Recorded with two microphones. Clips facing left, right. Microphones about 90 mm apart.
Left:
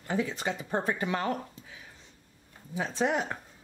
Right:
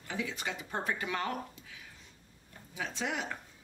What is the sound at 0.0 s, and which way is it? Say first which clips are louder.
Speech: left 7 dB; 40° left (ahead or behind).